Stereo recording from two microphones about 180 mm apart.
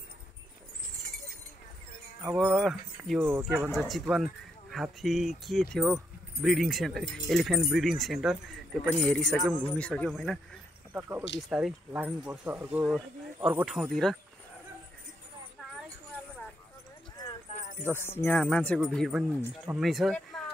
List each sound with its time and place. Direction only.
2.2 s speech: 10° right (ahead or behind)
3.4 s speech: centre (ahead or behind)
10.9 s speech: 10° right (ahead or behind)
13.7 s speech: centre (ahead or behind)
17.5 s music: 45° left (ahead or behind)
17.9 s speech: 15° left (ahead or behind)